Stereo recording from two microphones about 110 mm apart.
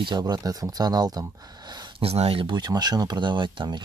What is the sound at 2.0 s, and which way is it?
Speech, 65° right (ahead or behind).